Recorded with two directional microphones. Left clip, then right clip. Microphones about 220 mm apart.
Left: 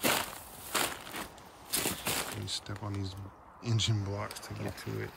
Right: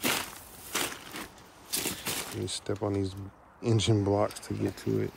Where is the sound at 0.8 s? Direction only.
5° left (ahead or behind).